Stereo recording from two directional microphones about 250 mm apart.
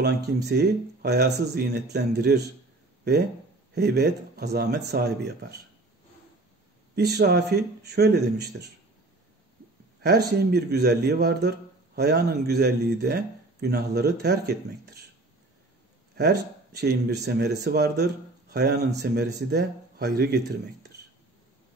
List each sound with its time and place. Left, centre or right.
0.0 s speech: right
3.7 s speech: right
7.0 s speech: right
10.0 s speech: right
16.2 s speech: right